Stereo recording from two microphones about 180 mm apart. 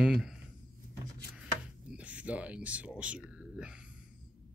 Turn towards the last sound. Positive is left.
turn(degrees=-5)  # may be behind; listen again after turning